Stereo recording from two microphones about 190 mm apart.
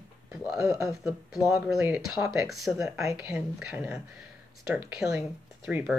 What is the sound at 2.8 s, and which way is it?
Speech, 15° right (ahead or behind).